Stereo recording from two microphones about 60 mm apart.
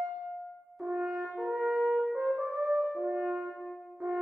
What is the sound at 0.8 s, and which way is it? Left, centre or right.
French horn, centre.